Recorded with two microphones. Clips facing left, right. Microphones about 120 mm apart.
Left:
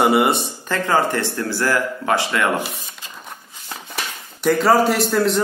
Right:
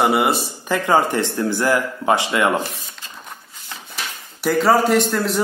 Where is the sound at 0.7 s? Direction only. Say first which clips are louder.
Right 2 dB; 15° right (ahead or behind).